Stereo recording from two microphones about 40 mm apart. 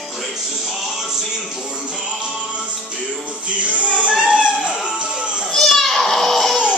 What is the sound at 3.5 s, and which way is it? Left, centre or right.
Music, right.